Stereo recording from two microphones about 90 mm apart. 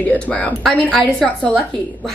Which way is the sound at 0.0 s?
15° left (ahead or behind).